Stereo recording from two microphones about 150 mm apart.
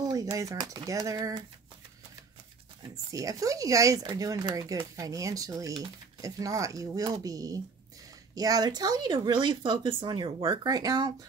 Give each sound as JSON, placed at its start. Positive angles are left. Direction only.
{"t": 0.0, "sound": "speech", "side_deg": -25}
{"t": 3.1, "sound": "speech", "side_deg": -20}